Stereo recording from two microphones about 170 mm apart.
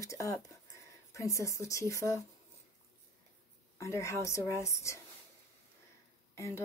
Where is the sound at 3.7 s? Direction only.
15° left (ahead or behind).